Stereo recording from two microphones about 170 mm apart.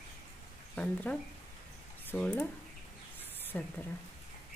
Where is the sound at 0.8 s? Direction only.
10° left (ahead or behind).